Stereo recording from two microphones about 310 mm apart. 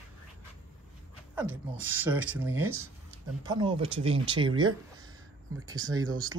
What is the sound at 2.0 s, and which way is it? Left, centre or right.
Speech, centre.